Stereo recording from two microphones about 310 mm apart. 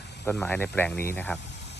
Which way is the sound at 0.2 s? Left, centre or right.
Centre.